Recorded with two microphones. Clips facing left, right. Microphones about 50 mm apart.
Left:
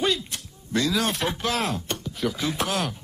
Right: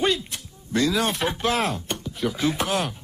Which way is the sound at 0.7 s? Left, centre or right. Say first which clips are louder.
Right 2 dB; centre.